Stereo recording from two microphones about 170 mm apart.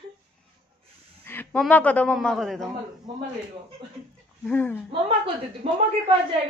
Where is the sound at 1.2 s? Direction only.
10° left (ahead or behind).